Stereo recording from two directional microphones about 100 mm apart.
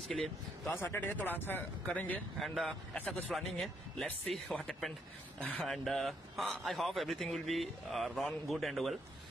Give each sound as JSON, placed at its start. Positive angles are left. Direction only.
{"t": 0.1, "sound": "speech", "side_deg": 5}
{"t": 0.7, "sound": "speech", "side_deg": 20}
{"t": 2.4, "sound": "speech", "side_deg": 0}
{"t": 3.0, "sound": "speech", "side_deg": 15}
{"t": 3.3, "sound": "speech", "side_deg": 0}
{"t": 5.6, "sound": "speech", "side_deg": 0}